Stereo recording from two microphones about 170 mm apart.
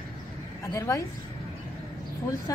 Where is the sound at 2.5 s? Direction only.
20° left (ahead or behind).